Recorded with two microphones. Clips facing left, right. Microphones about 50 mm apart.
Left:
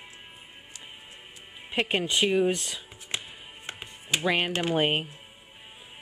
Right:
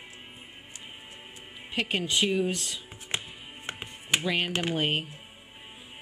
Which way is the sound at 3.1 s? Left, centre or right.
Right.